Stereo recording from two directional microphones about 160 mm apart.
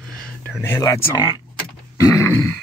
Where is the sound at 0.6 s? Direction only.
20° left (ahead or behind).